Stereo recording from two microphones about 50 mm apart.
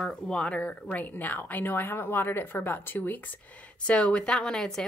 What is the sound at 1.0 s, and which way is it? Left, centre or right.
Speech, left.